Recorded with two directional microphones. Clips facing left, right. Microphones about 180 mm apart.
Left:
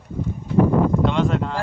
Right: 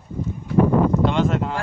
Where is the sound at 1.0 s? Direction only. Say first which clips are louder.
Even; centre (ahead or behind).